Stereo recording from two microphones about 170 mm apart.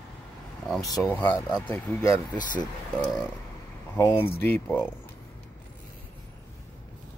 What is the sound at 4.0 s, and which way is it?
Speech, 15° left (ahead or behind).